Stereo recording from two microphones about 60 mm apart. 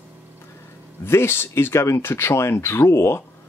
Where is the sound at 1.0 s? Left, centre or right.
Left.